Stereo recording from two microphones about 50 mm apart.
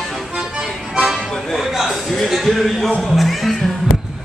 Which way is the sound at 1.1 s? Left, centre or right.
Centre.